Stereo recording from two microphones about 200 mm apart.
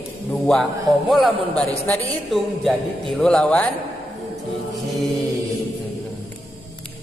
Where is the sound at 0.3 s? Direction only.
Centre (ahead or behind).